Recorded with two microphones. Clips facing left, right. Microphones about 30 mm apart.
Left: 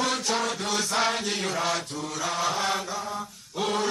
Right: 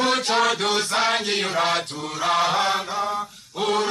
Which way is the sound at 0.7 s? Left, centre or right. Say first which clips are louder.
Right 4 dB; right.